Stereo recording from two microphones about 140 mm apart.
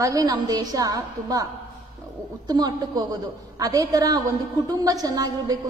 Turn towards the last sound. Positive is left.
turn(degrees=-25)  # may be behind; listen again after turning